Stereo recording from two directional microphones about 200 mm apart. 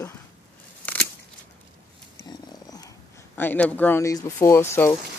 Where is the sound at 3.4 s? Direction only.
10° left (ahead or behind).